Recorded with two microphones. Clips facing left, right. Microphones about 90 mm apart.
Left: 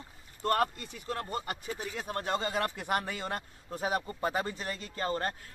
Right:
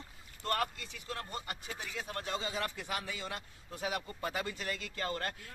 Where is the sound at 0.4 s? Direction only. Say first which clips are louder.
Left 6 dB; 40° left (ahead or behind).